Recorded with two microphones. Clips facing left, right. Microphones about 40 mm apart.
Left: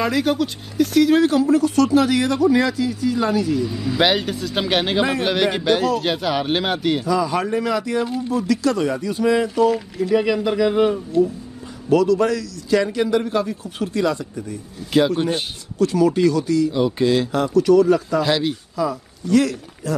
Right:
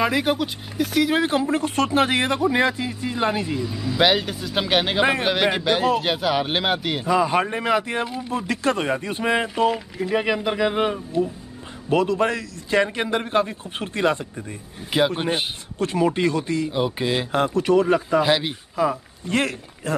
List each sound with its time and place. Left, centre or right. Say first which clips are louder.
0.0 s speech: left 2 dB; centre
3.6 s speech: left 1 dB; centre
7.1 s speech: right 5 dB; right
14.9 s speech: left 3 dB; right
17.3 s speech: left 3 dB; right
18.8 s speech: right 4 dB; right